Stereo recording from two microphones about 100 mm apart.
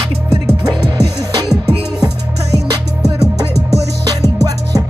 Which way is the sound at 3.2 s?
35° right (ahead or behind).